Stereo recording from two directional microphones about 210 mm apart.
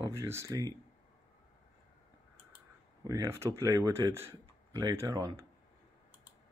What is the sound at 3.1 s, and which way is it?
Speech, 15° right (ahead or behind).